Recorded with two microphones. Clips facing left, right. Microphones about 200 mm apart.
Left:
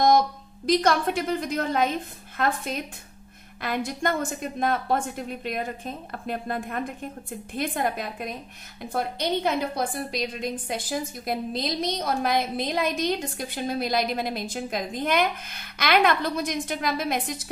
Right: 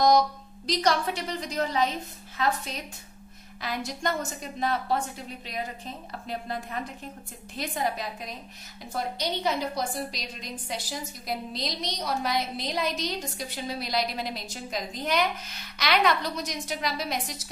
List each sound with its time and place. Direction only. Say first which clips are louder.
0.7 s a woman's voice: left 4 dB; 50° left (ahead or behind)